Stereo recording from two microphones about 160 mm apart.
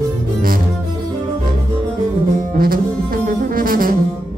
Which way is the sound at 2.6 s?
65° right (ahead or behind).